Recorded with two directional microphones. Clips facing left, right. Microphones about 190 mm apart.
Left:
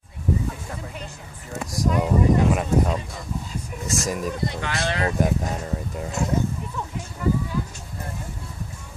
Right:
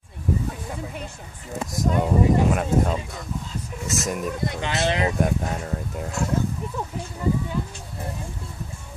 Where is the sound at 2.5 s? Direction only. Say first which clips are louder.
Even; centre (ahead or behind).